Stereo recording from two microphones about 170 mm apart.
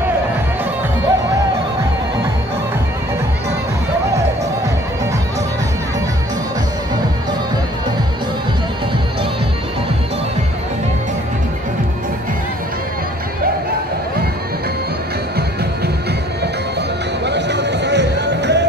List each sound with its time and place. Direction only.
17.3 s music: 90° right